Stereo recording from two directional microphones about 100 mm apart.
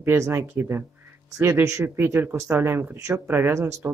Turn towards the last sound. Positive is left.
turn(degrees=-30)  # may be behind; listen again after turning